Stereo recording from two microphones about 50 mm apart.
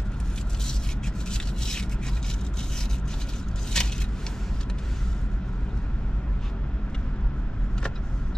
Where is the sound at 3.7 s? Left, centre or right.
Centre.